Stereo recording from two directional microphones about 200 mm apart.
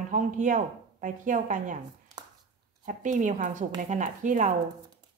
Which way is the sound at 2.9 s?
40° right (ahead or behind).